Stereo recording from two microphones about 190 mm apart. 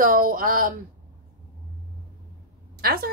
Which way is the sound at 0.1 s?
45° right (ahead or behind).